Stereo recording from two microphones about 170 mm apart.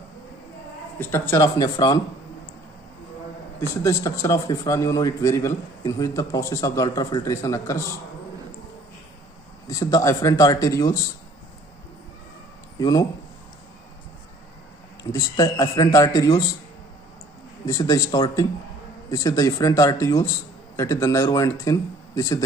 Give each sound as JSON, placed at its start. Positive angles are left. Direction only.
{"t": 0.9, "sound": "a man's voice", "side_deg": 15}
{"t": 3.8, "sound": "a man's voice", "side_deg": 20}
{"t": 9.7, "sound": "a man's voice", "side_deg": 20}
{"t": 15.1, "sound": "a man's voice", "side_deg": 20}
{"t": 17.6, "sound": "a man's voice", "side_deg": 20}